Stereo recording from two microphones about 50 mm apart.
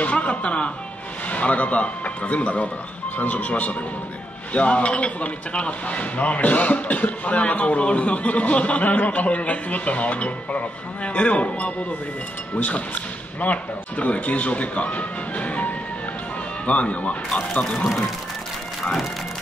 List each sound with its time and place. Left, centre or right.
0.0 s music: left
1.3 s speech: left